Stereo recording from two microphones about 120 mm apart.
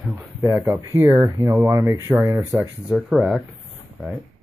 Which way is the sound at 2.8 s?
Centre (ahead or behind).